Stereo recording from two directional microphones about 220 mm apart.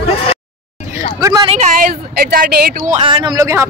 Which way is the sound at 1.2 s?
15° right (ahead or behind).